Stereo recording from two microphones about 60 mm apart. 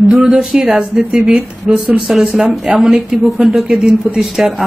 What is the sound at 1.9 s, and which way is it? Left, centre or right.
Speech, centre.